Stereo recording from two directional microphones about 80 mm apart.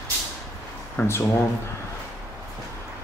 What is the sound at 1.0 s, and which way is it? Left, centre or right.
Speech, left.